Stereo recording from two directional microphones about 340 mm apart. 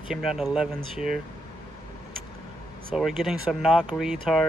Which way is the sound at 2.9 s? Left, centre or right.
Centre.